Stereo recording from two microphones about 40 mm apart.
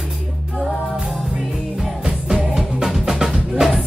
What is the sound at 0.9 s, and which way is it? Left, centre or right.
Music, centre.